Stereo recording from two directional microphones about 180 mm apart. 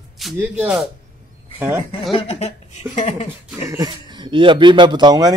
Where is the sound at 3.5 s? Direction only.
15° right (ahead or behind).